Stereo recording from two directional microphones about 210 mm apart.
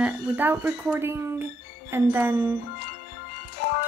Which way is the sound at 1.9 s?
10° right (ahead or behind).